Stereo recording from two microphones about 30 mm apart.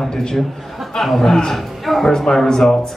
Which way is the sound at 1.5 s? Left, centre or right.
Centre.